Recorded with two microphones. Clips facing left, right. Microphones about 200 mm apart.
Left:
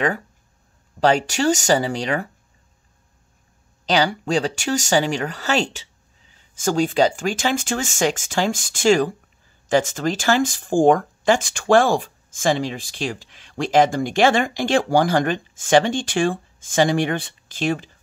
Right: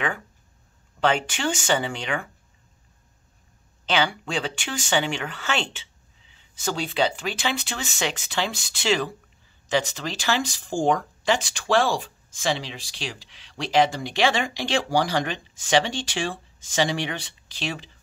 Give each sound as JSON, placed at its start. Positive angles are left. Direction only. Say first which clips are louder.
{"t": 1.0, "sound": "speech", "louder": "left 6 dB", "side_deg": 40}
{"t": 3.8, "sound": "speech", "louder": "left 4 dB", "side_deg": 40}